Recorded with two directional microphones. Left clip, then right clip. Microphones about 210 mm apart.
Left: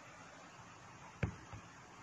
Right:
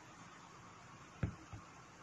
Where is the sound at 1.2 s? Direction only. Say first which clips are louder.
Left 4 dB; 25° left (ahead or behind).